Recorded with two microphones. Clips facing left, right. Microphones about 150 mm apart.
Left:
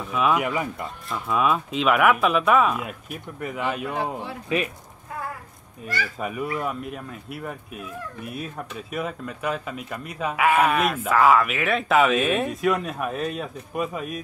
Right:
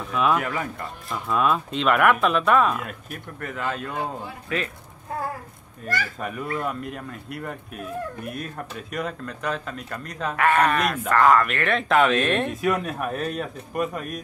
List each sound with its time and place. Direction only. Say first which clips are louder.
0.0 s speech: even; 5° left (ahead or behind); by 4.6 s 20° left (ahead or behind)
6.1 s speech: left 1 dB; 10° left (ahead or behind)